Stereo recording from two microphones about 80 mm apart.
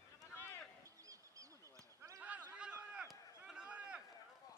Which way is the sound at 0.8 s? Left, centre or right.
Right.